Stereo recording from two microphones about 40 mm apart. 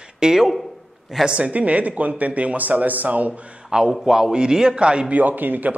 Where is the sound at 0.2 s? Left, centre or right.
Centre.